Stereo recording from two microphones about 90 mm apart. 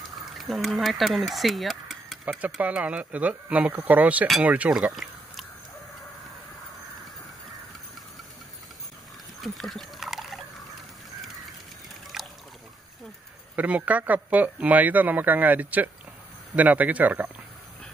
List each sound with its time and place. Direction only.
0.2 s speech: centre (ahead or behind)
2.6 s speech: 15° right (ahead or behind)
9.4 s a sound: centre (ahead or behind)
12.1 s boat: centre (ahead or behind)
13.6 s speech: 15° right (ahead or behind)